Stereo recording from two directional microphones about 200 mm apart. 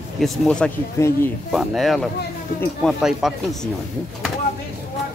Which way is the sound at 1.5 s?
Centre (ahead or behind).